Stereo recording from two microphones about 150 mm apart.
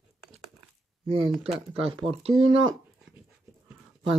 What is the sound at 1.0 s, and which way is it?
Speech, 35° right (ahead or behind).